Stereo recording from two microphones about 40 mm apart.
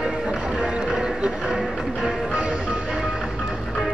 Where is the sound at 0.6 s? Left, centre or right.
Centre.